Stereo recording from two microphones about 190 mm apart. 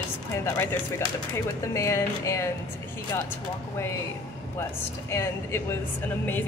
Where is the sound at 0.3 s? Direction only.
15° left (ahead or behind).